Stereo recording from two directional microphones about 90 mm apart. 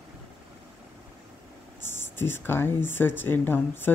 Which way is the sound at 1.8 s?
25° left (ahead or behind).